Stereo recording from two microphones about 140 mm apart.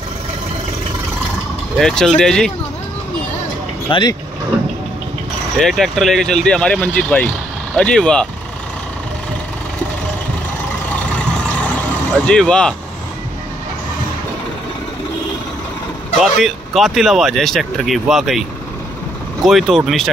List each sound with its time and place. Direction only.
1.8 s speech: 5° left (ahead or behind)
3.9 s speech: 30° left (ahead or behind)
5.6 s speech: centre (ahead or behind)
12.3 s speech: 5° left (ahead or behind)
16.2 s speech: centre (ahead or behind)
19.4 s speech: centre (ahead or behind)